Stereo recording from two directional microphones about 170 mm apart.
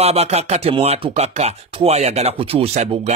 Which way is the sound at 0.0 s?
40° right (ahead or behind).